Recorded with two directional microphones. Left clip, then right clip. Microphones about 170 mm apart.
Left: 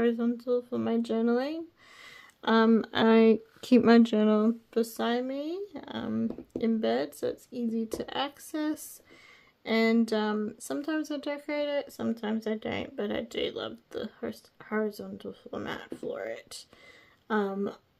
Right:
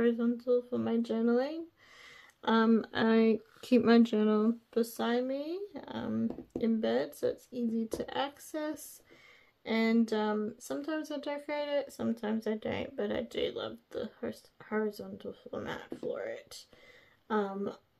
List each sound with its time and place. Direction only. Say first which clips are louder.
0.0 s speech: left 2 dB; 35° left (ahead or behind)